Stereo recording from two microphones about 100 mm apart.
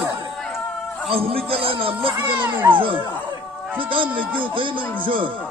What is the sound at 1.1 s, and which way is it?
Speech, 70° right (ahead or behind).